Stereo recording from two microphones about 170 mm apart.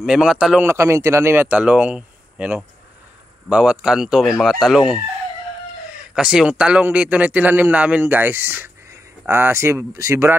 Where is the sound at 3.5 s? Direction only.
5° right (ahead or behind).